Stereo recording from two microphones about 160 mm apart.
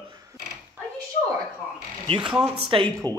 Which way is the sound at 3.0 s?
15° left (ahead or behind).